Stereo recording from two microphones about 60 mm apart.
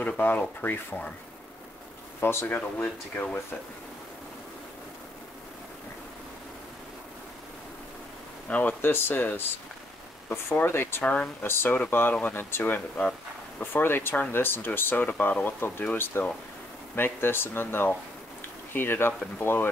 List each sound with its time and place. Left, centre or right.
0.0 s speech: left
2.1 s speech: left
8.5 s speech: left
10.7 s speech: left